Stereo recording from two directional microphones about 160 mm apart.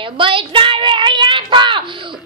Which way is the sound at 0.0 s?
30° right (ahead or behind).